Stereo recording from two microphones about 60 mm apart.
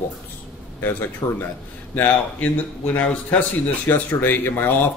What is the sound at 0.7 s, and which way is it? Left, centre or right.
Speech, left.